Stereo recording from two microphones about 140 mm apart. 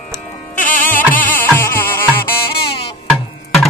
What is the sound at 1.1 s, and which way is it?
Music, 10° left (ahead or behind).